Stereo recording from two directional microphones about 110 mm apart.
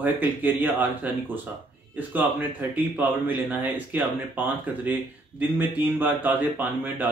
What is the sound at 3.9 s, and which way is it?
Speech, 15° right (ahead or behind).